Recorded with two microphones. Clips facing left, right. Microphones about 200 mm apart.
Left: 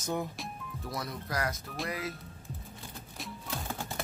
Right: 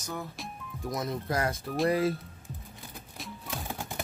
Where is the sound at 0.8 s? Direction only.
20° right (ahead or behind).